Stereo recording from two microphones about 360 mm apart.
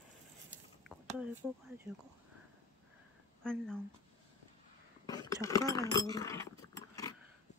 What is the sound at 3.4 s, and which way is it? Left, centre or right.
Speech, centre.